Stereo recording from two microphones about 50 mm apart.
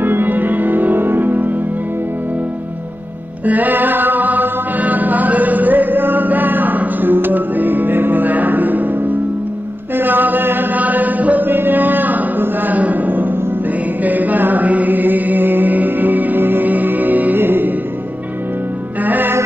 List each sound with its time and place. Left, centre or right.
0.0 s music: right
3.4 s music: right
9.9 s chant: right
14.0 s mantra: right
17.4 s music: right
19.0 s music: right